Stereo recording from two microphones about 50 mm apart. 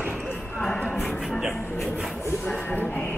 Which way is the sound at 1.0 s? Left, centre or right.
Centre.